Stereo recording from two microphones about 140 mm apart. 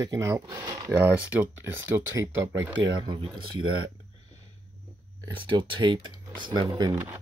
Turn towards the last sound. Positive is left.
turn(degrees=-20)  # may be behind; listen again after turning